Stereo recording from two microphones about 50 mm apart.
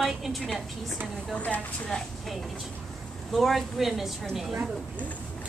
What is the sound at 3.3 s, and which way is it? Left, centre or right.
Speech, centre.